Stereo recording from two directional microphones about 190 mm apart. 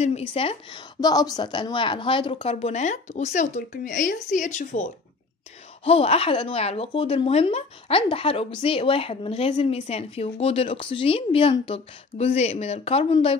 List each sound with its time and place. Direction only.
0.3 s a woman's voice: 30° left (ahead or behind)
5.9 s a woman's voice: 30° left (ahead or behind)